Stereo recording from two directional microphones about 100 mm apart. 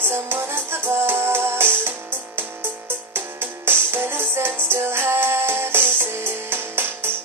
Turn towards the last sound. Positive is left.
turn(degrees=-25)  # may be behind; listen again after turning